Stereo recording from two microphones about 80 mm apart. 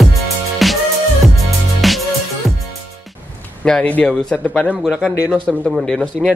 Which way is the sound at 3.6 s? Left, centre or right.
Centre.